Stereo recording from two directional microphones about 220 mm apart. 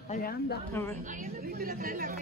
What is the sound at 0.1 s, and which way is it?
Speech, 40° left (ahead or behind).